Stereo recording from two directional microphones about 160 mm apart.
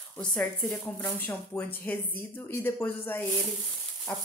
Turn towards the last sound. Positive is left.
turn(degrees=10)  # may be behind; listen again after turning